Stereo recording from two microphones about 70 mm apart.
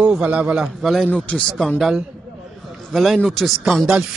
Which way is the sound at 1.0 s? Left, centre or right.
Centre.